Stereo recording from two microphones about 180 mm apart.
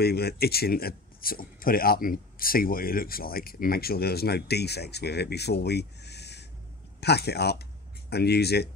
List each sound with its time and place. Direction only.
0.0 s speech: 60° left (ahead or behind)